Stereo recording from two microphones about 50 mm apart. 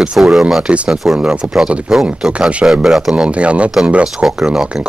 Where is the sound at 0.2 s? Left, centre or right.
Centre.